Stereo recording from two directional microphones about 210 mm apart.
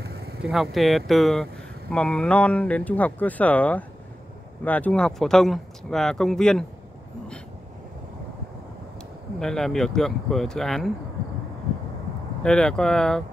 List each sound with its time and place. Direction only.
0.0 s vehicle: 50° right (ahead or behind)
0.4 s speech: centre (ahead or behind)
9.4 s speech: centre (ahead or behind)
12.4 s speech: 5° left (ahead or behind)